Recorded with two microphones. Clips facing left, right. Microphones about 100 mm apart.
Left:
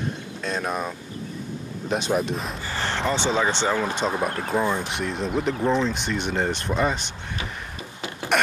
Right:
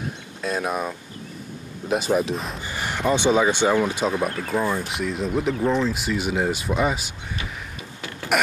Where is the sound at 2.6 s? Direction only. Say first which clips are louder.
Right 2 dB; 15° right (ahead or behind).